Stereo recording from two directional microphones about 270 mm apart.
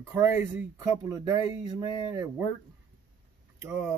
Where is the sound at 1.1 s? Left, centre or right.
Centre.